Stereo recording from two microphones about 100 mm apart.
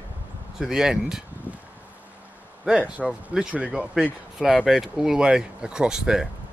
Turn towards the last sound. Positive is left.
turn(degrees=-5)  # may be behind; listen again after turning